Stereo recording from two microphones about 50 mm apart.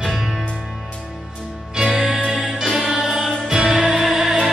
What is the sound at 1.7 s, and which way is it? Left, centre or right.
Music, centre.